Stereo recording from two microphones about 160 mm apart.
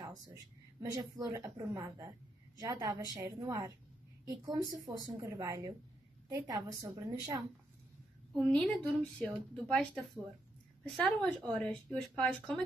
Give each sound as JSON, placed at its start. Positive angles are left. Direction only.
{"t": 0.0, "sound": "a woman's voice", "side_deg": -20}
{"t": 8.4, "sound": "speech", "side_deg": 10}